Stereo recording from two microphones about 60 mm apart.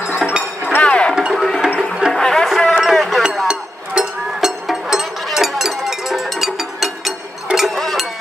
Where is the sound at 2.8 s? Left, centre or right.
Centre.